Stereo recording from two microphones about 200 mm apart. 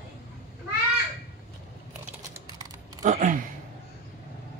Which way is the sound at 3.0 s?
40° right (ahead or behind).